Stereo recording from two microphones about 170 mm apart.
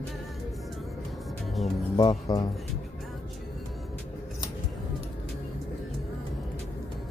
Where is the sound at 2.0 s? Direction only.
25° left (ahead or behind).